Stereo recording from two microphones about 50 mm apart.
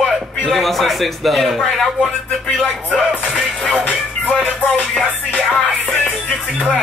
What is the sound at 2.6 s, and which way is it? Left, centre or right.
Music, centre.